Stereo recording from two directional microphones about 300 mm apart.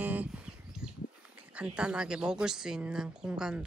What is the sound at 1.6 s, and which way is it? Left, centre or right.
Speech, centre.